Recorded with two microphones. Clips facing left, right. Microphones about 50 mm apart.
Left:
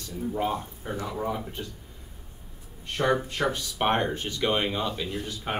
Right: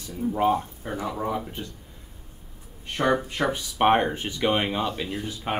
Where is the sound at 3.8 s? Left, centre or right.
Right.